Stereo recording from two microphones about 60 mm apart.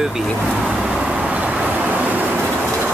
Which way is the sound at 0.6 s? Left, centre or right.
Centre.